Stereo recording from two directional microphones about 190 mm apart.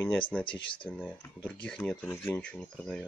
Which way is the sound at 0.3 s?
5° left (ahead or behind).